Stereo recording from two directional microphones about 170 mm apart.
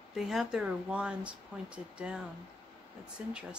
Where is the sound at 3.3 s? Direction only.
5° right (ahead or behind).